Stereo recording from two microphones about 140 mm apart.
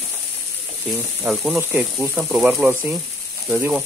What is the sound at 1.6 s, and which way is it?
Speech, 15° right (ahead or behind).